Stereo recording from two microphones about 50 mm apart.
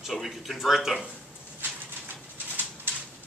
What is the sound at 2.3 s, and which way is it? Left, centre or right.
Pigeon, right.